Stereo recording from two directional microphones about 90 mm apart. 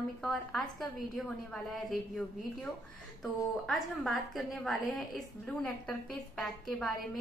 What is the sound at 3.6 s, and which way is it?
A woman's voice, centre (ahead or behind).